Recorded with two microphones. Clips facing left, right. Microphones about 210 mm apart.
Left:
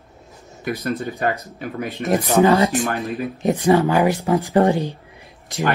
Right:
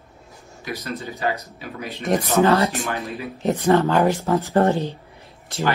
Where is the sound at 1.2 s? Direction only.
50° left (ahead or behind).